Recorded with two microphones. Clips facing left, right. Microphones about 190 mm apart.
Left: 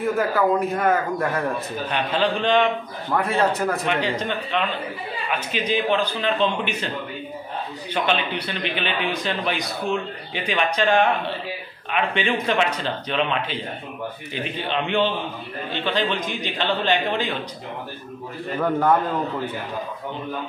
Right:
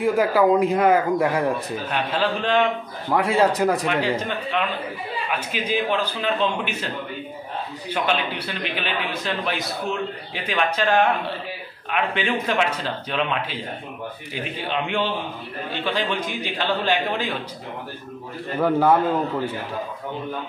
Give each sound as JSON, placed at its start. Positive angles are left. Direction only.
{"t": 0.0, "sound": "a man's voice", "side_deg": -15}
{"t": 7.9, "sound": "a man's voice", "side_deg": -5}
{"t": 18.6, "sound": "a man's voice", "side_deg": -10}